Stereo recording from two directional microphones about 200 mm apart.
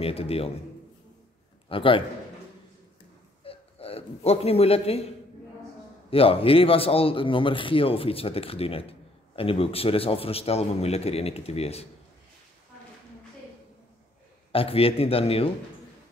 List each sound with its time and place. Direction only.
0.0 s a man's voice: 30° left (ahead or behind)
1.7 s a man's voice: 25° left (ahead or behind)
3.4 s a sound: 30° left (ahead or behind)
6.0 s a man's voice: 30° left (ahead or behind)
14.5 s a man's voice: 30° left (ahead or behind)